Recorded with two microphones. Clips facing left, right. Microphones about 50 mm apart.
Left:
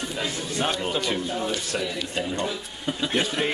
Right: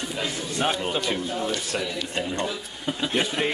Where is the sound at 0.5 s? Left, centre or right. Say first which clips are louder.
Right 1 dB; centre.